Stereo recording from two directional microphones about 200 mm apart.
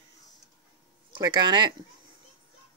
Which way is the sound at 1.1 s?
20° right (ahead or behind).